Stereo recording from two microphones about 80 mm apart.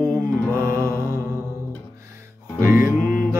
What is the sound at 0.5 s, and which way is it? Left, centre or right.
Mantra, right.